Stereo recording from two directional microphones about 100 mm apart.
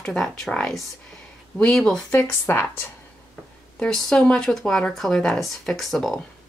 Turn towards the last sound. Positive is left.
turn(degrees=0)  # may be behind; listen again after turning